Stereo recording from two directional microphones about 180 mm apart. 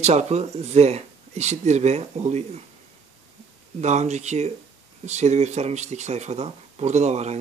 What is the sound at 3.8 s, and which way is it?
Speech, 40° right (ahead or behind).